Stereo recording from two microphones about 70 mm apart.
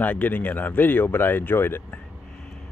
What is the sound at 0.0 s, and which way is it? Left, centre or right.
Speech, left.